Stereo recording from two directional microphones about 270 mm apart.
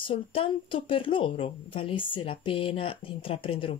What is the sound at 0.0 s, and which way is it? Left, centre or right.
Speech, centre.